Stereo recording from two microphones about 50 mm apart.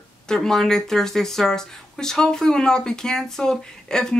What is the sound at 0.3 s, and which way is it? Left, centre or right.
Speech, centre.